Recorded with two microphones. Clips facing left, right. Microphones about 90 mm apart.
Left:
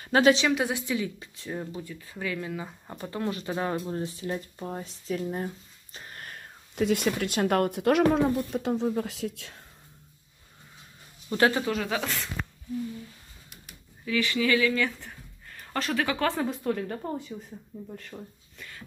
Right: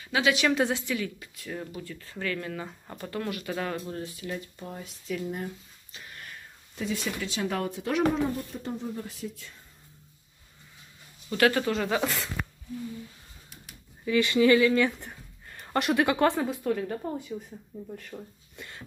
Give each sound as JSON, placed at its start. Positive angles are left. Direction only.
{"t": 0.0, "sound": "a woman's voice", "side_deg": 40}
{"t": 0.5, "sound": "a woman's voice", "side_deg": 5}
{"t": 0.7, "sound": "speech", "side_deg": 20}
{"t": 1.8, "sound": "speech", "side_deg": 15}
{"t": 6.7, "sound": "speech", "side_deg": 65}
{"t": 11.2, "sound": "speech", "side_deg": 20}
{"t": 11.6, "sound": "a woman's voice", "side_deg": 0}
{"t": 14.0, "sound": "speech", "side_deg": -20}
{"t": 16.4, "sound": "a woman's voice", "side_deg": 0}
{"t": 18.6, "sound": "cough", "side_deg": -20}